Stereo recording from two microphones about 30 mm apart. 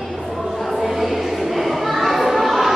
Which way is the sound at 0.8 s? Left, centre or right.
Centre.